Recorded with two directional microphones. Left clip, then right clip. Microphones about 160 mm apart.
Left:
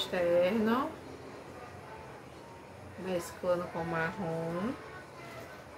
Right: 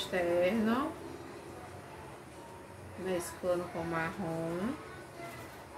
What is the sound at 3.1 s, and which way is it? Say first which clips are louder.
Speech: left 1 dB; 10° left (ahead or behind).